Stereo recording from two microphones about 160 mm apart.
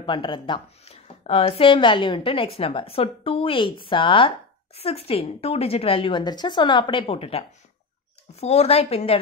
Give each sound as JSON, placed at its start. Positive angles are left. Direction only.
{"t": 0.0, "sound": "a woman's voice", "side_deg": 30}